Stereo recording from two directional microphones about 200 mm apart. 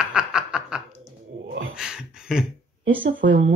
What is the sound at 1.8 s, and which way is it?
Speech, 5° right (ahead or behind).